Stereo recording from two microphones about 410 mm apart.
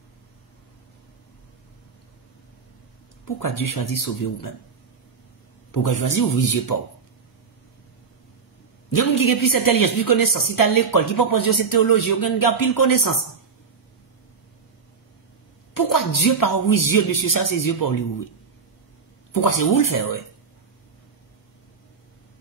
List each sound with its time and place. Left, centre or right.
3.3 s a woman's voice: left
5.7 s a woman's voice: left
8.9 s a woman's voice: left
15.7 s a woman's voice: left
19.3 s a woman's voice: left